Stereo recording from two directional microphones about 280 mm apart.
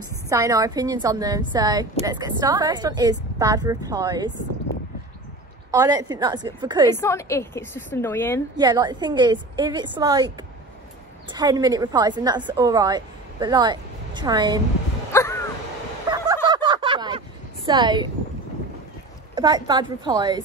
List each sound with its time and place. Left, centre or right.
0.3 s a woman's voice: centre
5.7 s a woman's voice: centre
6.9 s a woman's voice: centre
8.5 s a woman's voice: centre
15.1 s a sound: centre
16.1 s fowl: centre
17.6 s a woman's voice: centre
19.3 s a woman's voice: centre